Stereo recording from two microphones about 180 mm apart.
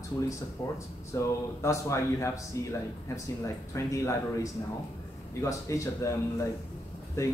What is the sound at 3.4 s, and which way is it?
Speech, 15° left (ahead or behind).